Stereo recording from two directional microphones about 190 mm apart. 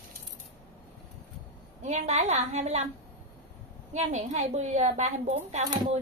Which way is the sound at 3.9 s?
35° right (ahead or behind).